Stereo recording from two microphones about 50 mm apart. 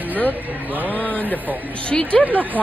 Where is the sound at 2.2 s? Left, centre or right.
Right.